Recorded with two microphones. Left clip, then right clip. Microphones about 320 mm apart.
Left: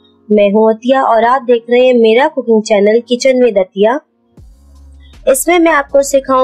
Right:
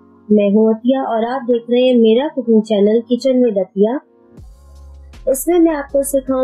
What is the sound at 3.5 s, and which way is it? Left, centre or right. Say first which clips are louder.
Speech: left 5 dB; left.